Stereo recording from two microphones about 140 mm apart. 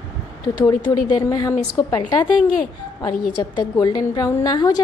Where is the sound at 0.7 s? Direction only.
30° left (ahead or behind).